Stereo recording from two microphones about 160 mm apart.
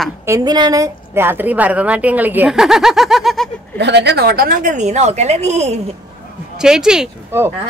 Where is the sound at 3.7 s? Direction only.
90° right; by 5.8 s 45° right (ahead or behind).